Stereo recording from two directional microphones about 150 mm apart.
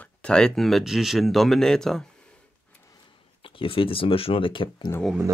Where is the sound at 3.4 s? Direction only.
35° left (ahead or behind).